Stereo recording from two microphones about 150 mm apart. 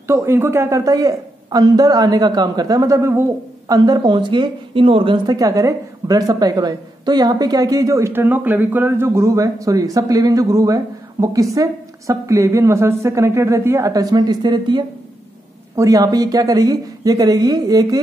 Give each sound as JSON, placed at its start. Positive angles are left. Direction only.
{"t": 0.0, "sound": "a man's voice", "side_deg": -15}